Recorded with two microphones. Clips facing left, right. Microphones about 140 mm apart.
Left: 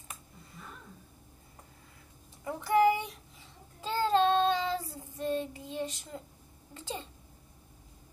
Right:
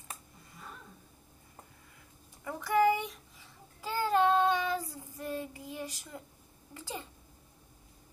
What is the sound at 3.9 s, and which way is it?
Child singing, 25° left (ahead or behind).